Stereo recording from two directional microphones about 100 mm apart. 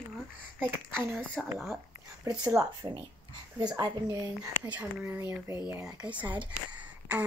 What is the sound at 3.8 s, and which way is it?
Speech, 45° right (ahead or behind).